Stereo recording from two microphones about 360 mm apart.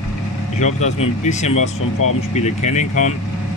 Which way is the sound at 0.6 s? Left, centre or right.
Centre.